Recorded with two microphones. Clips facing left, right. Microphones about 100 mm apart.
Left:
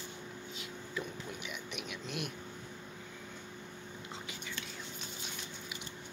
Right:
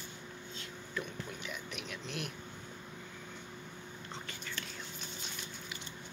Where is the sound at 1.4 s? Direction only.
5° left (ahead or behind).